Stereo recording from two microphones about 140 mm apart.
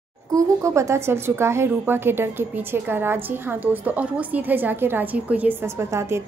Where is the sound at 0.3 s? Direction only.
20° right (ahead or behind).